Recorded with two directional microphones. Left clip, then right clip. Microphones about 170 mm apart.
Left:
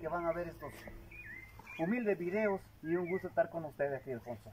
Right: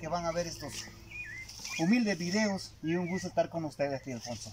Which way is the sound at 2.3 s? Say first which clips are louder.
Right 2 dB; 30° right (ahead or behind).